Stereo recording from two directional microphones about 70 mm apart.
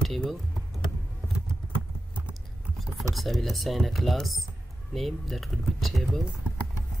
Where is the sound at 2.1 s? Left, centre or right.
Centre.